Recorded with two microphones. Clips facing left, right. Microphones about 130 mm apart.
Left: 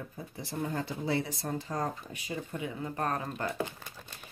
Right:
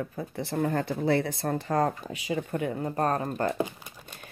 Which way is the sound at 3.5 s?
15° right (ahead or behind).